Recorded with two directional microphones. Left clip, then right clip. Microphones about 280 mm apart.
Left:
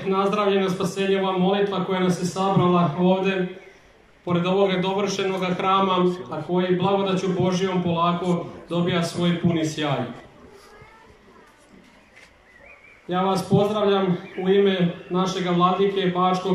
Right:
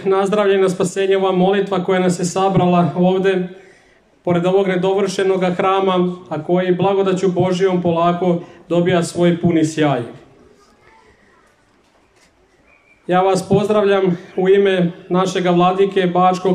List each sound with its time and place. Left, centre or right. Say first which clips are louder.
0.0 s a man's voice: right 6 dB; right
13.0 s a man's voice: right 8 dB; right